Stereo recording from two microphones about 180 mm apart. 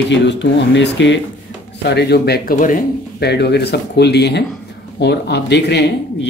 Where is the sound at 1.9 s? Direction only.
65° left (ahead or behind).